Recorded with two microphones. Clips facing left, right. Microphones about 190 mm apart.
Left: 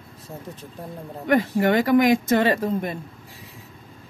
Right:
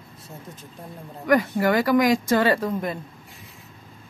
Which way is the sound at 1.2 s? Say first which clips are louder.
Even; 30° left (ahead or behind).